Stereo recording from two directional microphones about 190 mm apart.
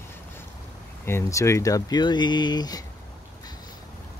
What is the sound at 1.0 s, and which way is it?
Speech, 15° left (ahead or behind).